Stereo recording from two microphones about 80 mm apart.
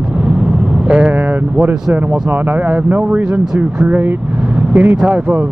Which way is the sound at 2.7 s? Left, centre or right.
Centre.